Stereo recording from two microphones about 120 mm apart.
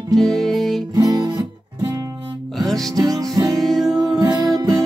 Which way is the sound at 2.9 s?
30° right (ahead or behind).